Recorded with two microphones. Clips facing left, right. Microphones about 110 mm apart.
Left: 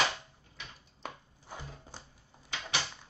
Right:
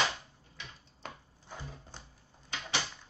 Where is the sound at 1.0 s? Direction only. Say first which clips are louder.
Left 2 dB; 10° left (ahead or behind).